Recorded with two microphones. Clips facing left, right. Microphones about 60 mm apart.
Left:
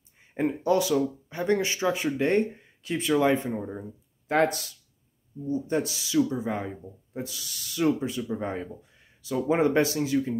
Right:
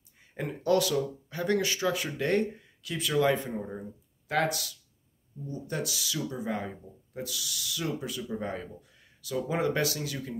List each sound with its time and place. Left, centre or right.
0.2 s speech: left
3.4 s speech: centre
4.3 s speech: left